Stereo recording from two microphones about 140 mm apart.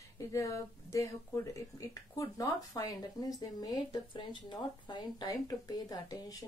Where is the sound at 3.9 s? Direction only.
30° left (ahead or behind).